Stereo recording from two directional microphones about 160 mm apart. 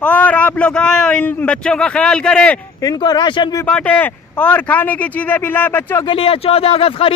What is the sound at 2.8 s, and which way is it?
Speech, 25° left (ahead or behind).